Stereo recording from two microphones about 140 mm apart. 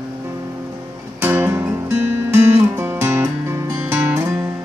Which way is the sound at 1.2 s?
15° right (ahead or behind).